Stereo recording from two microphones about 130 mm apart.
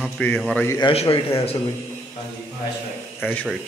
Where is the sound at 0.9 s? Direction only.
50° left (ahead or behind).